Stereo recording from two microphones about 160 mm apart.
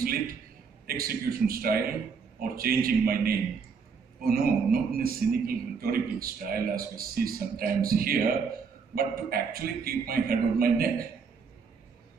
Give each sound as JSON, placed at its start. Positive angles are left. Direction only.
{"t": 0.8, "sound": "a man's voice", "side_deg": -70}